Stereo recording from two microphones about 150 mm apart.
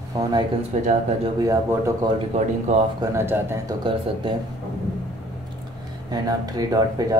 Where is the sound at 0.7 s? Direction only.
50° right (ahead or behind).